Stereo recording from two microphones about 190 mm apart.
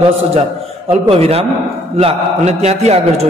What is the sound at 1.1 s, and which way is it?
A man's voice, 30° right (ahead or behind).